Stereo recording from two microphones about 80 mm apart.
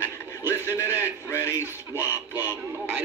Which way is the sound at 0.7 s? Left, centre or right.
Left.